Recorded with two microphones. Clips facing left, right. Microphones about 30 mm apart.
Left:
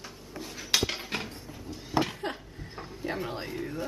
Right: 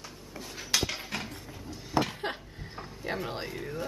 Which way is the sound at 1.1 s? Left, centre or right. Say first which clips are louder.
Left 2 dB; left.